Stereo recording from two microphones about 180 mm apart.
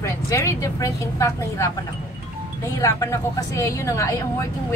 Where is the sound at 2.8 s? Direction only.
15° left (ahead or behind).